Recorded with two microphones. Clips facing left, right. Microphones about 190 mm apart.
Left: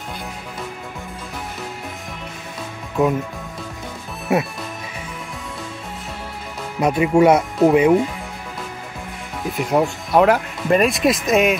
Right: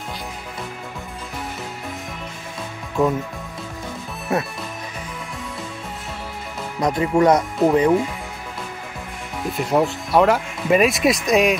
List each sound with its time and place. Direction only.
3.0 s speech: centre (ahead or behind)
6.8 s speech: 10° left (ahead or behind)
9.4 s speech: centre (ahead or behind)